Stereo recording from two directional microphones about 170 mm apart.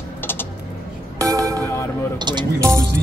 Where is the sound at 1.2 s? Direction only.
20° right (ahead or behind).